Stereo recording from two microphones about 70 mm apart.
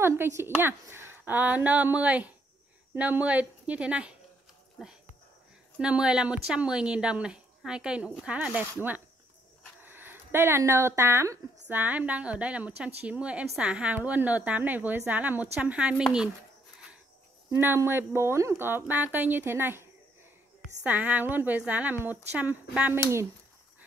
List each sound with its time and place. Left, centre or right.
0.0 s a woman's voice: right; by 4.2 s centre
5.8 s speech: centre
9.8 s speech: right
11.7 s a woman's voice: right
17.5 s speech: right
20.8 s a woman's voice: right